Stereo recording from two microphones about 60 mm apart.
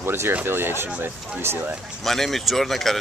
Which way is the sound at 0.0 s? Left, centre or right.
Right.